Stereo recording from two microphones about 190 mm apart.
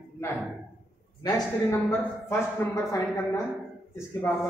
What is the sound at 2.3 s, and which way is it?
A man's voice, 15° left (ahead or behind).